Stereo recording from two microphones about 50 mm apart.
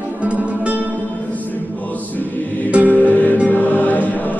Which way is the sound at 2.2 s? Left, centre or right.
Left.